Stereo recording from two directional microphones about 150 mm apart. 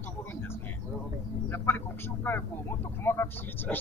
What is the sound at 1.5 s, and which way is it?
Speech, 15° left (ahead or behind).